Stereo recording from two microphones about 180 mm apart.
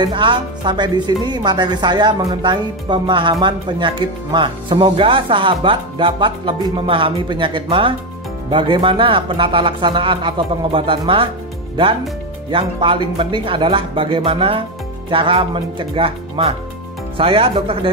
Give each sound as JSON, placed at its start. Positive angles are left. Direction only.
{"t": 0.0, "sound": "speech", "side_deg": -25}
{"t": 12.4, "sound": "speech", "side_deg": -30}